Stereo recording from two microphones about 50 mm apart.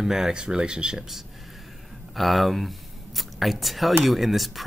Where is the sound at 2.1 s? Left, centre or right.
Centre.